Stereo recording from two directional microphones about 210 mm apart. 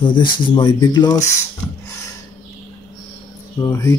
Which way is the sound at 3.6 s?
15° left (ahead or behind).